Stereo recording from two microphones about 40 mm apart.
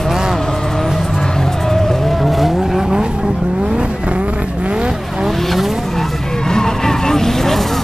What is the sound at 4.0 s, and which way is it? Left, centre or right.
Vehicle, right.